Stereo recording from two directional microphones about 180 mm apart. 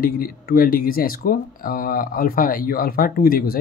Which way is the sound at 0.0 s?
55° left (ahead or behind).